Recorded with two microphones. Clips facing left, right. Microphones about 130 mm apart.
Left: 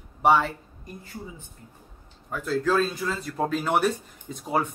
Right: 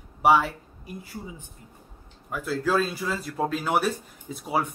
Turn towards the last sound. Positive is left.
turn(degrees=-5)  # may be behind; listen again after turning